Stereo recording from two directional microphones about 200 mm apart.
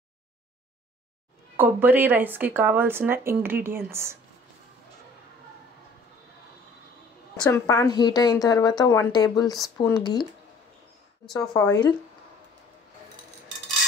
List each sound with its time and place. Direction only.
1.6 s speech: 10° right (ahead or behind)
7.4 s a woman's voice: 15° left (ahead or behind)
11.3 s speech: 15° left (ahead or behind)